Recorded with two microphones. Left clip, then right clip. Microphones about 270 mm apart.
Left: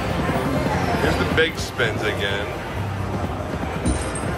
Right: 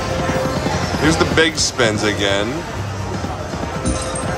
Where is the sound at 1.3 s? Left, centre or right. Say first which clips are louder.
Right 5 dB; right.